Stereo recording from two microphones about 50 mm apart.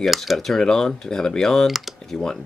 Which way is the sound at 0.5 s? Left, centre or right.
Centre.